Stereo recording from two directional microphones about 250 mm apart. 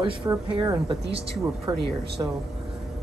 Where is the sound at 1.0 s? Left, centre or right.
Right.